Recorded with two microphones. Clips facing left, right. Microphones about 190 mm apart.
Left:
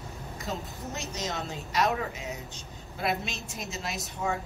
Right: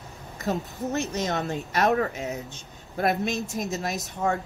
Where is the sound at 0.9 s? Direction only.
55° right (ahead or behind).